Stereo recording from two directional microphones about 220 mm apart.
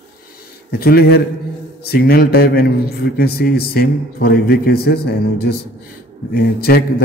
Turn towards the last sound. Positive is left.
turn(degrees=45)  # may be behind; listen again after turning